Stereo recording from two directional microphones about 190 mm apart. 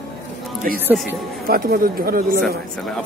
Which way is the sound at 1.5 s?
50° right (ahead or behind).